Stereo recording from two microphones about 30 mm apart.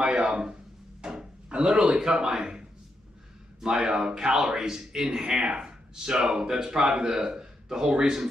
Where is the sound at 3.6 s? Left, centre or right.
Right.